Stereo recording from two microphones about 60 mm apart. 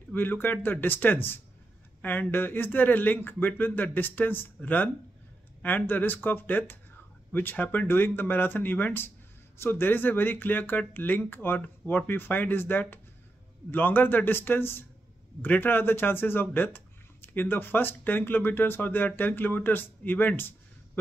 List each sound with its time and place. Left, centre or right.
0.1 s speech: left